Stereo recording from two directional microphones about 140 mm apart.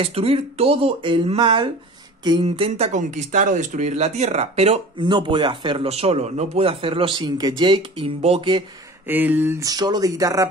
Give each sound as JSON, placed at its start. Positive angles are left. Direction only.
{"t": 0.0, "sound": "speech", "side_deg": -45}
{"t": 2.9, "sound": "speech", "side_deg": -60}
{"t": 5.0, "sound": "a man's voice", "side_deg": -35}
{"t": 9.0, "sound": "speech", "side_deg": -15}
{"t": 9.6, "sound": "speech", "side_deg": -25}